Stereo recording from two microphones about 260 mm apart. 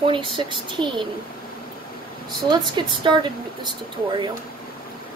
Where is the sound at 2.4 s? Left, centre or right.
Centre.